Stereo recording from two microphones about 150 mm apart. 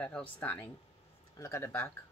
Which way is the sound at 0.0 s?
10° left (ahead or behind).